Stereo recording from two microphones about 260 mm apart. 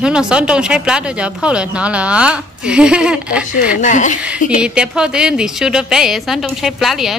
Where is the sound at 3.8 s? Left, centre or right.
Left.